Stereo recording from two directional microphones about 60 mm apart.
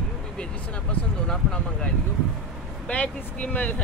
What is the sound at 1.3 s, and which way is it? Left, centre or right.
Speech, centre.